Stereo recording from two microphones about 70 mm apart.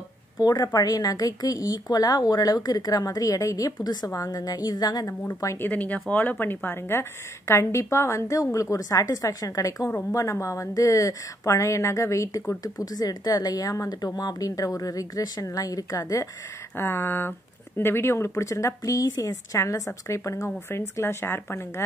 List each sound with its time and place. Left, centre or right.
0.4 s a woman's voice: left
4.1 s a woman's voice: left
5.6 s a woman's voice: left
16.7 s a woman's voice: left